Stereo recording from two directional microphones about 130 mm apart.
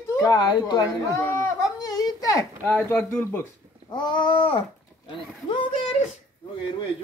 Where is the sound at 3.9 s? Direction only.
35° left (ahead or behind).